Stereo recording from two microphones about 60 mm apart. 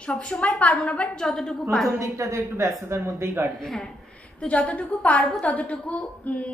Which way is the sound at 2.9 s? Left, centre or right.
Right.